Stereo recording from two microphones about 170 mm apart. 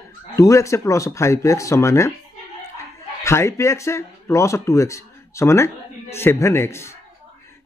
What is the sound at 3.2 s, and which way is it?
Speech, 15° left (ahead or behind).